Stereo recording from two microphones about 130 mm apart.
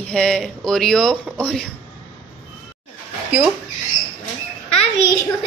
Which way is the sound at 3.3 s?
10° right (ahead or behind).